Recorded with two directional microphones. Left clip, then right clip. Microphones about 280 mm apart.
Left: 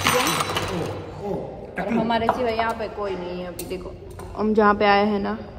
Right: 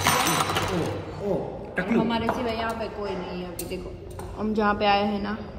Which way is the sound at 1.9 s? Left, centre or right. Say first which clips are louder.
Left 5 dB; centre.